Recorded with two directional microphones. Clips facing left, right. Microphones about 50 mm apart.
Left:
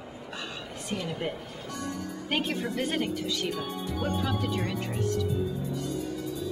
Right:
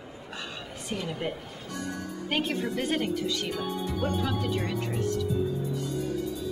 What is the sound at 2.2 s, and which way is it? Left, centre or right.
Speech, centre.